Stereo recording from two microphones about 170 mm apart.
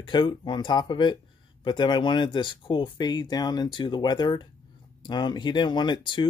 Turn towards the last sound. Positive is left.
turn(degrees=30)  # may be behind; listen again after turning